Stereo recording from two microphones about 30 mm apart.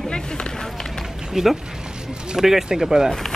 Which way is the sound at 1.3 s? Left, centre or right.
Centre.